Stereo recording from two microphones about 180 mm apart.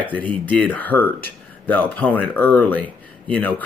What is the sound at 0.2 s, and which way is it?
Speech, 10° left (ahead or behind).